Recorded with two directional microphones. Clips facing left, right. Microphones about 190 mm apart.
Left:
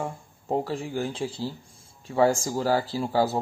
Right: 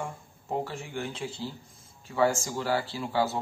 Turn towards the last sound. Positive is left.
turn(degrees=35)  # may be behind; listen again after turning